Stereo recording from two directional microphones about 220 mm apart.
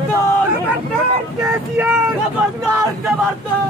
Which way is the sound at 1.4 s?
5° right (ahead or behind).